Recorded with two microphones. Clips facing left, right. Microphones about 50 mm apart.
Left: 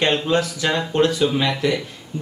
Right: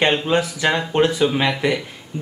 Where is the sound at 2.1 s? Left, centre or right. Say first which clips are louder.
Even; right.